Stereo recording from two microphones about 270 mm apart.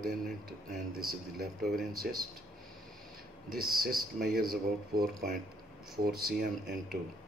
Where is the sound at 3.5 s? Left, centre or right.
Right.